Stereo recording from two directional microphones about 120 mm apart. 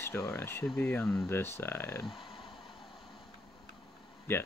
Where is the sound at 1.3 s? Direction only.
20° left (ahead or behind).